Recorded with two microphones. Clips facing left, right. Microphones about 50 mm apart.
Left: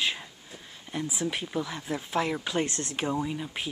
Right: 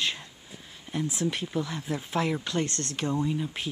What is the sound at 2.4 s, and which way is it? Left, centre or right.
Speech, centre.